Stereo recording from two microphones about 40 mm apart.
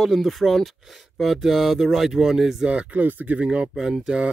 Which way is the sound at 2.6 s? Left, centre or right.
Right.